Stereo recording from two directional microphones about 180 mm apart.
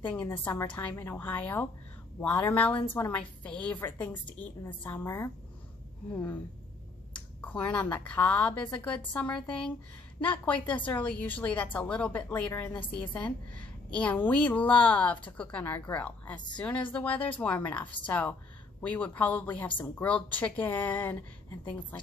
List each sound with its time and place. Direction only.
0.2 s a woman's voice: 25° left (ahead or behind)
0.7 s a woman's voice: 10° left (ahead or behind)
7.4 s a woman's voice: 10° left (ahead or behind)